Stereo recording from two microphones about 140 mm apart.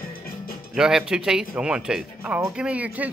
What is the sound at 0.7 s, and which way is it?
Speech, 5° right (ahead or behind).